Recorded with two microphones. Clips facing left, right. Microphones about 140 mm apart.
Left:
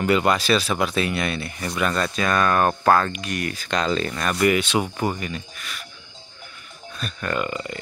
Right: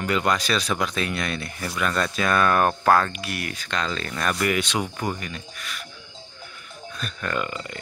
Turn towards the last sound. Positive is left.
turn(degrees=5)  # may be behind; listen again after turning